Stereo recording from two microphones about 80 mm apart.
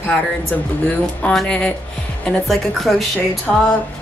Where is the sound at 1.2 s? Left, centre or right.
Centre.